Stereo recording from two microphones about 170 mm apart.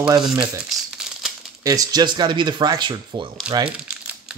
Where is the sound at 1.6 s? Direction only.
20° right (ahead or behind).